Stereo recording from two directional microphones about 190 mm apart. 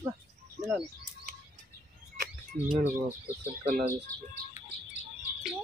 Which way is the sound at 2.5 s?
45° right (ahead or behind).